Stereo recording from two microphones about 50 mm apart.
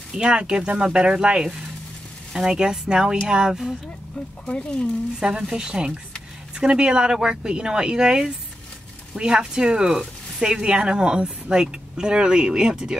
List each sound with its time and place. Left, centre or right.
0.1 s speech: centre
4.5 s speech: centre
5.2 s speech: centre